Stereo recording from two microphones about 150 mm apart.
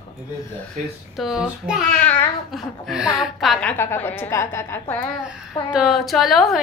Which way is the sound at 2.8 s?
5° right (ahead or behind).